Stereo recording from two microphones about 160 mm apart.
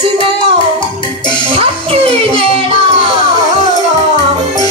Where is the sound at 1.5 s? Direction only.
35° right (ahead or behind).